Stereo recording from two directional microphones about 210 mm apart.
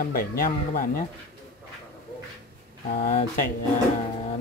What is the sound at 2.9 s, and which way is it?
Speech, 40° left (ahead or behind).